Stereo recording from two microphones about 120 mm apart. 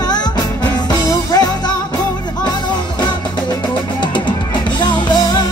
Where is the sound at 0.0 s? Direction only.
35° left (ahead or behind).